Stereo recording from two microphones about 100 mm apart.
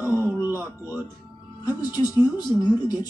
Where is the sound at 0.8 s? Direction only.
20° right (ahead or behind).